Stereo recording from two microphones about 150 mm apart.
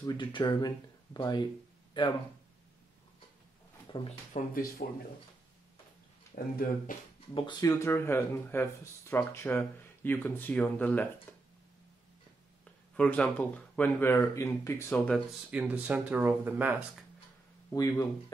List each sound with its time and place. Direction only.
0.0 s speech: 30° left (ahead or behind)
4.3 s speech: 75° left (ahead or behind)
6.3 s speech: 65° left (ahead or behind)
7.3 s speech: 30° left (ahead or behind)
7.7 s speech: 15° left (ahead or behind)
11.3 s a sound: 15° left (ahead or behind)
12.9 s speech: 5° left (ahead or behind)
15.0 s speech: centre (ahead or behind)
15.5 s speech: 10° right (ahead or behind)
17.6 s speech: 20° left (ahead or behind)